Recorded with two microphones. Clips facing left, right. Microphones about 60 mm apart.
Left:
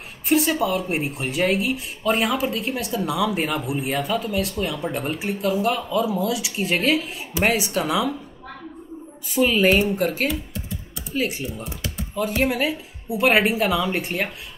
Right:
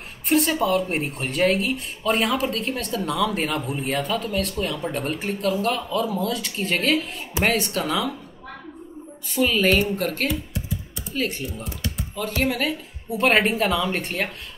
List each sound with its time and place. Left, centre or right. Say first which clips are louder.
0.3 s speech: even; centre
9.3 s speech: left 2 dB; centre